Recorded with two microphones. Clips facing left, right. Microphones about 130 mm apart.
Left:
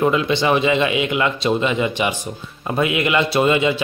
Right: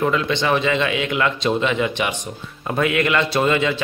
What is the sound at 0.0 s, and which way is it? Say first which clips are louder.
Speech: left 3 dB; 10° left (ahead or behind).